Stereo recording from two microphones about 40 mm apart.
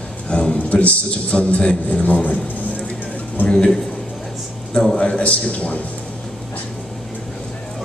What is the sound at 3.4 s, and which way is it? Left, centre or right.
Speech, left.